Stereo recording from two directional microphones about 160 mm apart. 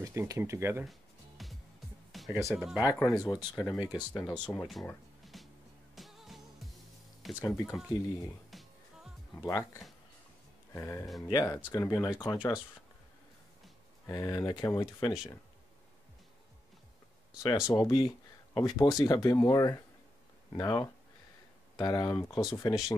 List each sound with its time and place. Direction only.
0.0 s speech: 20° right (ahead or behind)
1.4 s music: centre (ahead or behind)
2.1 s speech: centre (ahead or behind)
2.8 s speech: 20° left (ahead or behind)
3.1 s speech: centre (ahead or behind)
4.1 s speech: 5° left (ahead or behind)
5.2 s music: centre (ahead or behind)
7.3 s speech: 20° left (ahead or behind)
8.5 s music: centre (ahead or behind)
9.4 s speech: 15° left (ahead or behind)
10.7 s speech: 15° left (ahead or behind)
14.0 s speech: 20° left (ahead or behind)
17.4 s speech: 20° left (ahead or behind)